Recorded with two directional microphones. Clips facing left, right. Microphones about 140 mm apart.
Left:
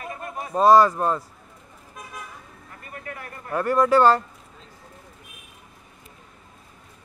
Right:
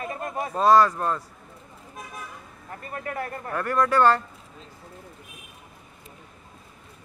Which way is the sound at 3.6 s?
10° left (ahead or behind).